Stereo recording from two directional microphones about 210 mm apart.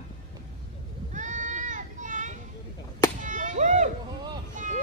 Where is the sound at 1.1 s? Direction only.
35° right (ahead or behind).